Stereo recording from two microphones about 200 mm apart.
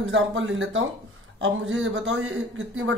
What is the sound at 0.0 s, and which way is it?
A man's voice, 65° right (ahead or behind).